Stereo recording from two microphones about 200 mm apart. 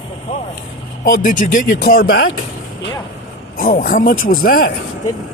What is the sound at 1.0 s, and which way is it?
Speech, 40° left (ahead or behind).